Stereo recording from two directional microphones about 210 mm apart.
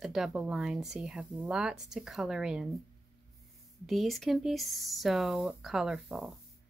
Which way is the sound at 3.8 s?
Centre (ahead or behind).